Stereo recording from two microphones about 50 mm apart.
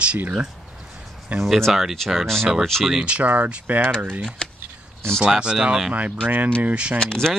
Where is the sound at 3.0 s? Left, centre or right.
Right.